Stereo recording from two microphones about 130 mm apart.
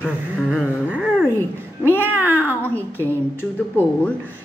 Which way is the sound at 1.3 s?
15° left (ahead or behind).